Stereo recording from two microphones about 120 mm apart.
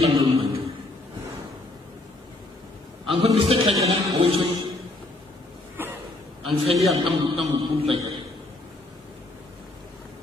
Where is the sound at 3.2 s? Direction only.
55° right (ahead or behind).